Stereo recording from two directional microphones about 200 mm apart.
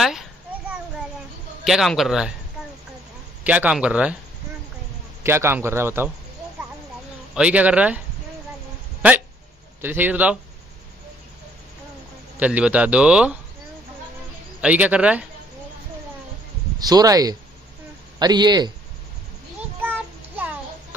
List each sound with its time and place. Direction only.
0.0 s a sound: centre (ahead or behind)
1.6 s a man's voice: centre (ahead or behind)
3.4 s a man's voice: 5° right (ahead or behind)
5.2 s a man's voice: 10° right (ahead or behind)
7.3 s a man's voice: 5° right (ahead or behind)
9.8 s a man's voice: 10° right (ahead or behind)
12.4 s a man's voice: 5° right (ahead or behind)
14.6 s a man's voice: 5° right (ahead or behind)
16.8 s speech: 20° right (ahead or behind)